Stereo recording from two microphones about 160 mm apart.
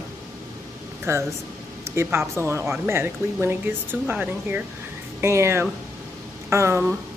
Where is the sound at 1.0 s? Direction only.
15° right (ahead or behind).